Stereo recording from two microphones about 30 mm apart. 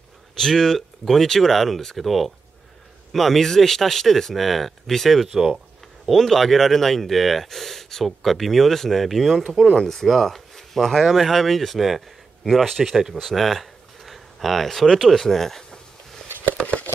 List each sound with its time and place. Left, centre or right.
0.4 s speech: centre
4.4 s speech: centre
5.3 s speech: centre
6.1 s speech: centre
15.2 s a sound: centre
16.6 s a sound: centre